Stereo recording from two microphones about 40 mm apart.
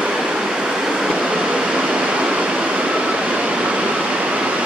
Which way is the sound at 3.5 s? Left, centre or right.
Right.